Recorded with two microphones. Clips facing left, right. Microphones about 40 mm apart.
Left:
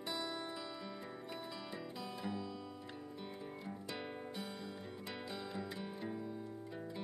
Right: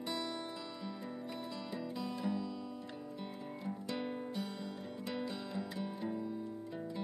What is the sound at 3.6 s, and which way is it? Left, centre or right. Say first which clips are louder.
Music: right 8 dB; centre.